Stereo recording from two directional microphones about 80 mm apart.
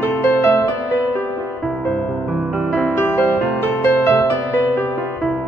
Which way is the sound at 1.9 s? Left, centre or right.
Centre.